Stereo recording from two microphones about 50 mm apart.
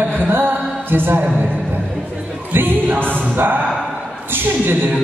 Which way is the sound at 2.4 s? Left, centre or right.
Right.